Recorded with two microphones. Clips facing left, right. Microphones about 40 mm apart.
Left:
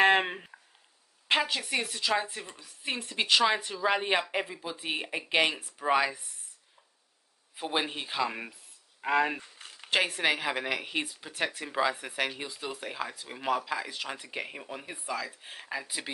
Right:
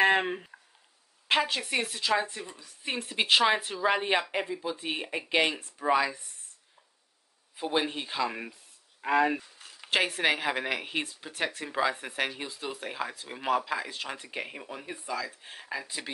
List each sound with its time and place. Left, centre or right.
0.0 s a sound: centre
1.2 s speech: centre
2.2 s speech: centre
3.1 s speech: centre
5.9 s speech: centre
7.5 s speech: centre
9.8 s speech: centre